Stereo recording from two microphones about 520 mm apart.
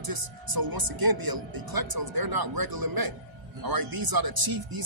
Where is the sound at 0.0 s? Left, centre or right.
Right.